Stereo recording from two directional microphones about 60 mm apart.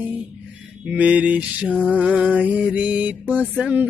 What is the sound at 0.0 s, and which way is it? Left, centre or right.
Music, right.